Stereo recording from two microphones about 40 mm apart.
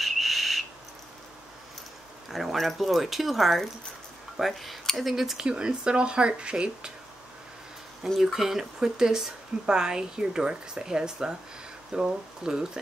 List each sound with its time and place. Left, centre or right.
0.0 s whistle: centre
2.5 s speech: centre
5.4 s speech: right
8.2 s speech: centre